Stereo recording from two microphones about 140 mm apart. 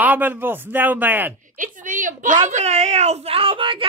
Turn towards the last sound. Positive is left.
turn(degrees=-40)  # may be behind; listen again after turning